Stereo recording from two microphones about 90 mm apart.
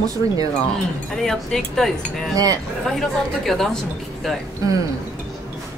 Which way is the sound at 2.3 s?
45° right (ahead or behind).